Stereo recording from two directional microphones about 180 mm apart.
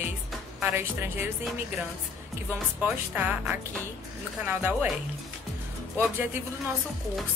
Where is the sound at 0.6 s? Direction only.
10° right (ahead or behind).